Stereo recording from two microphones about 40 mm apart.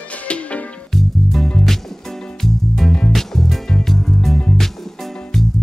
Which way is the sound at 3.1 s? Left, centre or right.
Centre.